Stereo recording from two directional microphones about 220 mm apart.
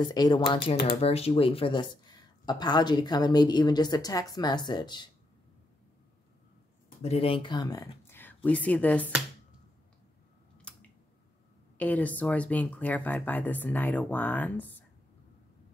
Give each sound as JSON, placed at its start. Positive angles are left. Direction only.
{"t": 0.0, "sound": "speech", "side_deg": 20}
{"t": 7.0, "sound": "speech", "side_deg": 25}
{"t": 10.7, "sound": "a sound", "side_deg": 5}
{"t": 11.8, "sound": "speech", "side_deg": 5}